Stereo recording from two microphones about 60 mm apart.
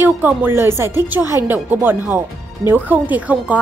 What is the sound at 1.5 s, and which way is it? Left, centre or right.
Speech, right.